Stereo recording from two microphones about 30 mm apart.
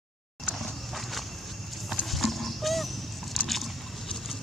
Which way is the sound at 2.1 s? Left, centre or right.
Centre.